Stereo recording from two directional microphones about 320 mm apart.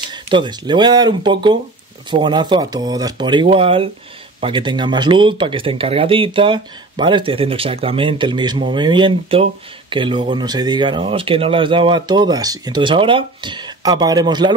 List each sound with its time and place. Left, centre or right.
0.1 s speech: centre